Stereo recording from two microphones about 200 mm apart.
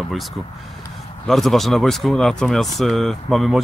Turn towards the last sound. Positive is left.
turn(degrees=0)  # may be behind; listen again after turning